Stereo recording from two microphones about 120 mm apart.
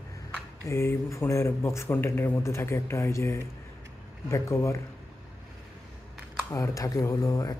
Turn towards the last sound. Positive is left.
turn(degrees=30)  # may be behind; listen again after turning